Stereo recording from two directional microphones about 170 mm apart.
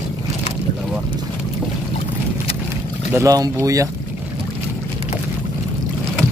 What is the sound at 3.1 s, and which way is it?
Speech, 20° right (ahead or behind).